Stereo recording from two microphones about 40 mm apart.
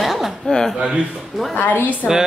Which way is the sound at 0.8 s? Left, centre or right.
Right.